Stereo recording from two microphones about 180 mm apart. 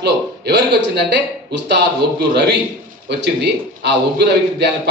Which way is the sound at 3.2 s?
70° right (ahead or behind).